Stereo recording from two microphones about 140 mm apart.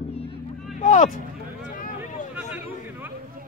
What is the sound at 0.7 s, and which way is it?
Vehicle, 60° left (ahead or behind).